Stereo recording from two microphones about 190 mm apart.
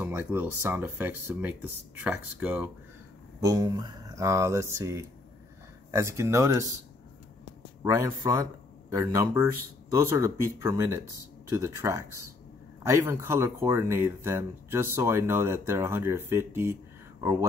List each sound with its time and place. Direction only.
0.0 s speech: 10° right (ahead or behind)
7.8 s speech: 15° right (ahead or behind)